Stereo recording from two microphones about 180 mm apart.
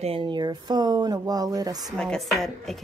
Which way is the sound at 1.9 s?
5° left (ahead or behind).